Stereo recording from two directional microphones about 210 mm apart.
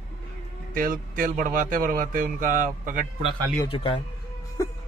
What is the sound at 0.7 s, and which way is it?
A man's voice, 40° right (ahead or behind).